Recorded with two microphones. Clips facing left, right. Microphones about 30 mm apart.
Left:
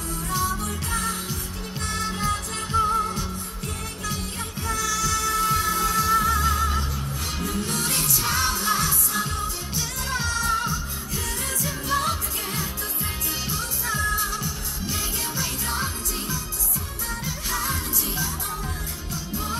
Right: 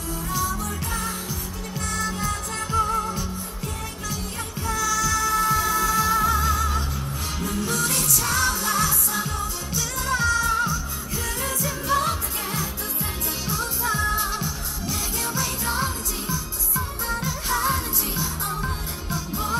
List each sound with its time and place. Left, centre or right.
0.3 s music: left
4.8 s music: centre
11.6 s music: centre
15.6 s music: centre